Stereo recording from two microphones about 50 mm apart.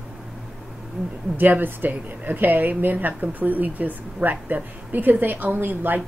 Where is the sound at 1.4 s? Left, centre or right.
Right.